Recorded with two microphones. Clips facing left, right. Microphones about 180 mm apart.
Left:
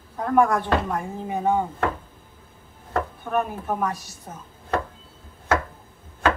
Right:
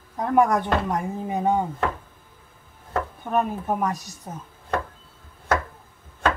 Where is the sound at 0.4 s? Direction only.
20° right (ahead or behind).